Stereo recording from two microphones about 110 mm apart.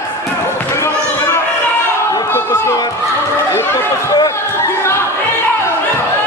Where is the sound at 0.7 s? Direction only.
25° left (ahead or behind).